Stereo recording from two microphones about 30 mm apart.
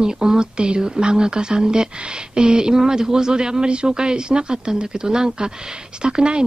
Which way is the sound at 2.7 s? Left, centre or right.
Centre.